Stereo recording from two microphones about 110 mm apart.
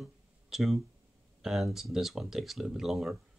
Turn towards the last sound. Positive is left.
turn(degrees=0)  # may be behind; listen again after turning